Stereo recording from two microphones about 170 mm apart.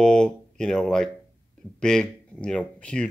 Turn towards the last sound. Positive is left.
turn(degrees=5)  # may be behind; listen again after turning